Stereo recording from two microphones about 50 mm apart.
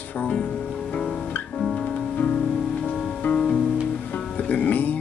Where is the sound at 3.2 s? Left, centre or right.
Left.